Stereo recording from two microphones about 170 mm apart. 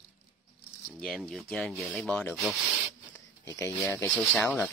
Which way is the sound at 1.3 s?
5° left (ahead or behind).